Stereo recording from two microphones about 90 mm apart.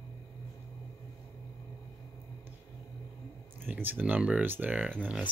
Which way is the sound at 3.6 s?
20° right (ahead or behind).